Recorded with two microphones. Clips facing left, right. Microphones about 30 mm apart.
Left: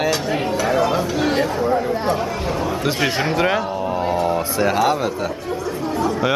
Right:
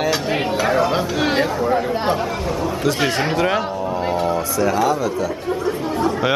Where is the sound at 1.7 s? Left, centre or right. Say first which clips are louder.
Right 1 dB; centre.